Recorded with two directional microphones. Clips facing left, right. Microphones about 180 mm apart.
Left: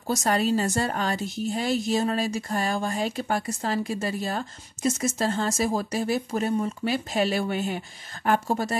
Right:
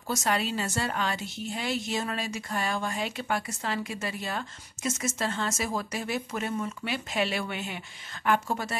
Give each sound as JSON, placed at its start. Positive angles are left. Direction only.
{"t": 0.0, "sound": "a woman's voice", "side_deg": 40}